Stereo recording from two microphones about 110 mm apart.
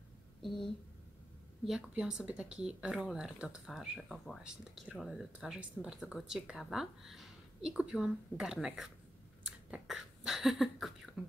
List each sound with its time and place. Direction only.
0.4 s speech: centre (ahead or behind)